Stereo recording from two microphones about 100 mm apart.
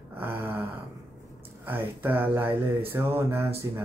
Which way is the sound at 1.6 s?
20° right (ahead or behind).